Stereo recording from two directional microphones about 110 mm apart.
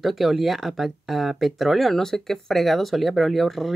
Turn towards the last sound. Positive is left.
turn(degrees=0)  # may be behind; listen again after turning